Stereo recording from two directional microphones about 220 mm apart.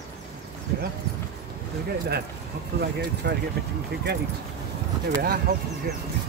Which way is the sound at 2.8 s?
50° right (ahead or behind).